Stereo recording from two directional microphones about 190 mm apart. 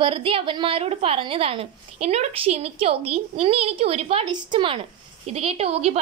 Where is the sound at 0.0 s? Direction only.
30° right (ahead or behind).